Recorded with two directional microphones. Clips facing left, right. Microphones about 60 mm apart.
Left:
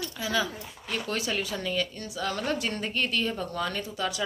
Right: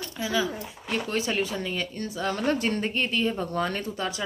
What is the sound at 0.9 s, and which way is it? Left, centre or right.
Speech, right.